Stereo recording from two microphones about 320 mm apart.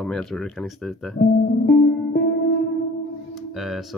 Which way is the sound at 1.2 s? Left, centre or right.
Left.